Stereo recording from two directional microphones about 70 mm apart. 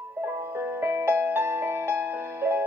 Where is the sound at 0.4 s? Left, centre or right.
Right.